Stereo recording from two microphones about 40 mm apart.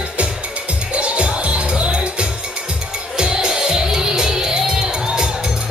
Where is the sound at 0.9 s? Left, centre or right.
Right.